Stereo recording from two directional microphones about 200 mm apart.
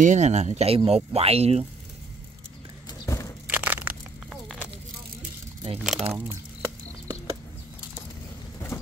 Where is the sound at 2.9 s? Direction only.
15° left (ahead or behind).